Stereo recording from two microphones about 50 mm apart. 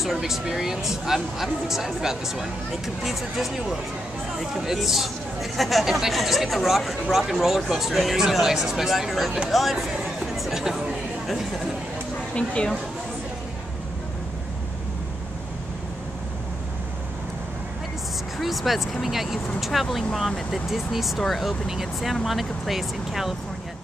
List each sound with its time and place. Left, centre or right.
0.0 s speech: centre
12.4 s speech: left
18.4 s speech: centre